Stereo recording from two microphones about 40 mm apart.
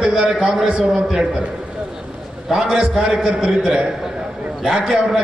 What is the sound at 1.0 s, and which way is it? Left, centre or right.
Speech, centre.